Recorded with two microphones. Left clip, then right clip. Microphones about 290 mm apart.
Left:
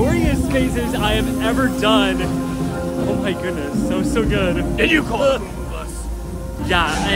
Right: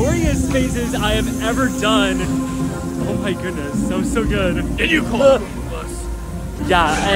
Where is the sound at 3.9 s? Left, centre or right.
Centre.